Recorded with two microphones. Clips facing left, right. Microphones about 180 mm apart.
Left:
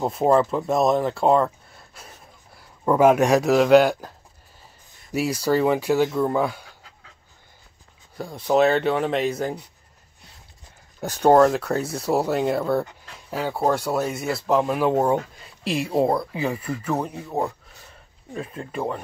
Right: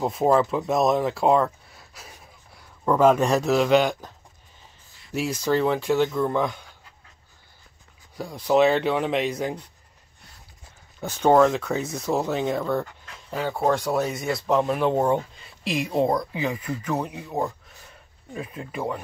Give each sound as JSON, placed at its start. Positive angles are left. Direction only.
{"t": 0.0, "sound": "speech", "side_deg": 0}
{"t": 2.8, "sound": "speech", "side_deg": 10}
{"t": 5.1, "sound": "speech", "side_deg": 10}
{"t": 8.2, "sound": "speech", "side_deg": 0}
{"t": 11.1, "sound": "speech", "side_deg": 10}
{"t": 15.6, "sound": "speech", "side_deg": 35}
{"t": 16.2, "sound": "speech", "side_deg": 5}
{"t": 18.3, "sound": "speech", "side_deg": -5}